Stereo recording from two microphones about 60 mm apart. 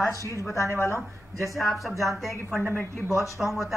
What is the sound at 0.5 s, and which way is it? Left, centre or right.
Speech, left.